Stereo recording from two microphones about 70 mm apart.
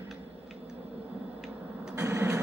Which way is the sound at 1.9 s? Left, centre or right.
Right.